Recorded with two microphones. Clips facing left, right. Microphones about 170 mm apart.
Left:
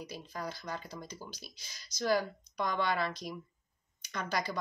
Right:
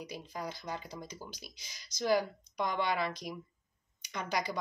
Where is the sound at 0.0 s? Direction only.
15° right (ahead or behind).